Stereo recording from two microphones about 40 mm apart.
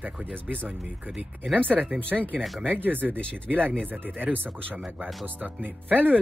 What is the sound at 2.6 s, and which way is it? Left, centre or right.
Speech, right.